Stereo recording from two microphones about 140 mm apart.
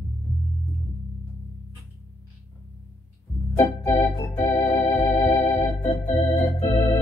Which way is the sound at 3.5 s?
20° left (ahead or behind).